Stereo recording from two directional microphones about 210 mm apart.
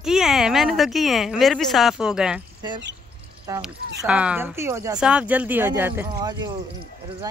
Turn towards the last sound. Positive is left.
turn(degrees=-20)  # may be behind; listen again after turning